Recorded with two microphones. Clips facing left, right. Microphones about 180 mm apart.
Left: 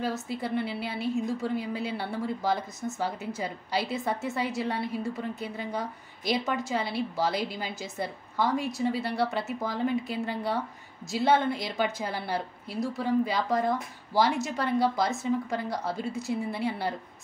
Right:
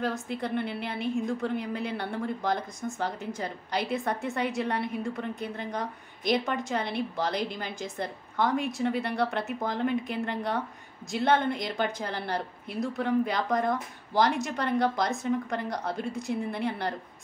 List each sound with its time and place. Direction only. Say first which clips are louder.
0.4 s a woman's voice: even; 5° left (ahead or behind)